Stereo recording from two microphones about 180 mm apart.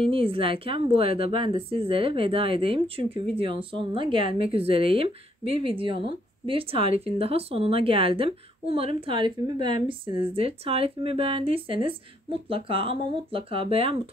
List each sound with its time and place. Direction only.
0.0 s a woman's voice: 30° right (ahead or behind)